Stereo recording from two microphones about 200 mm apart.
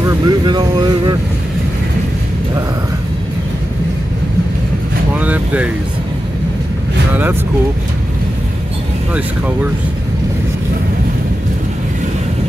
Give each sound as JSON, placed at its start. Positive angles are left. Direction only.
{"t": 0.0, "sound": "speech", "side_deg": -20}
{"t": 5.1, "sound": "speech", "side_deg": -5}